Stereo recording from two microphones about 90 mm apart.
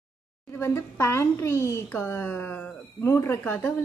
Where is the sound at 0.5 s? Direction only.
30° left (ahead or behind).